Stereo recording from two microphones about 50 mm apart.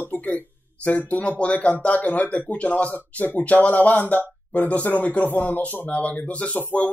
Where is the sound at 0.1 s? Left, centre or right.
Left.